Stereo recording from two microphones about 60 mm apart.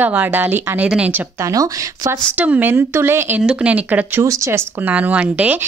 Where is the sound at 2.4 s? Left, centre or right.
Right.